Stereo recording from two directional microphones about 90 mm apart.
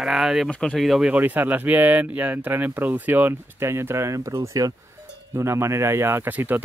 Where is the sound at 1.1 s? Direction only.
20° right (ahead or behind).